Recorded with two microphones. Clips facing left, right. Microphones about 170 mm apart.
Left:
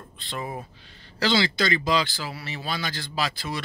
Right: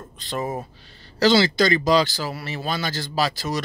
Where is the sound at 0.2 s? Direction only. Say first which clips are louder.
Right 6 dB; 40° right (ahead or behind).